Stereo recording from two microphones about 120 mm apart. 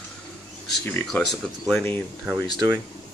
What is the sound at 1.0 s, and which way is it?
Speech, centre (ahead or behind).